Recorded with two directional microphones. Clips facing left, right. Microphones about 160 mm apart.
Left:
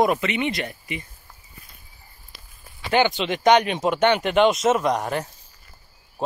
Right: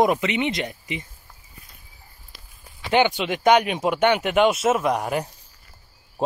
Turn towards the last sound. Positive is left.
turn(degrees=-10)  # may be behind; listen again after turning